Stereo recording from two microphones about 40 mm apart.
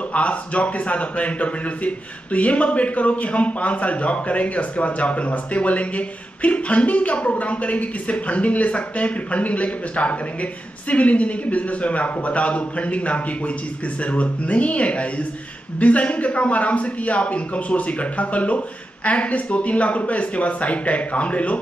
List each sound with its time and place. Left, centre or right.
0.1 s speech: left